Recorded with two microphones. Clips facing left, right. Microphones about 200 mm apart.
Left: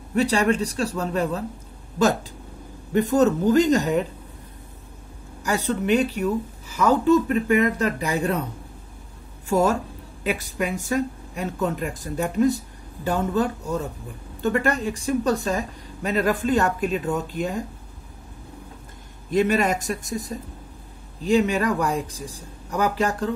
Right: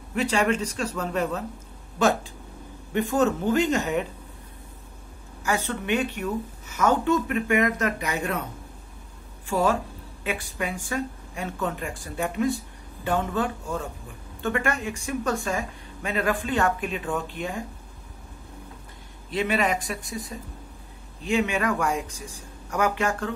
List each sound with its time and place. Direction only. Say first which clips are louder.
0.1 s a woman's voice: left 3 dB; 35° left (ahead or behind)
2.9 s a woman's voice: left 4 dB; 40° left (ahead or behind)
5.4 s a woman's voice: left 4 dB; 35° left (ahead or behind)
9.5 s a woman's voice: left 3 dB; 45° left (ahead or behind)
19.3 s a woman's voice: left 4 dB; 45° left (ahead or behind)